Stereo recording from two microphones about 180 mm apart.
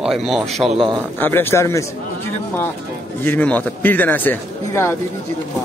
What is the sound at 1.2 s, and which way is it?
Speech, 10° left (ahead or behind).